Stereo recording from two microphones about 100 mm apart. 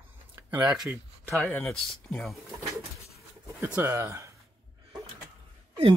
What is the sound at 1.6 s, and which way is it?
Speech, centre (ahead or behind).